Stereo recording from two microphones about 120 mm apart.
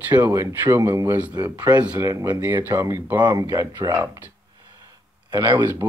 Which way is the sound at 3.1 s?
35° right (ahead or behind).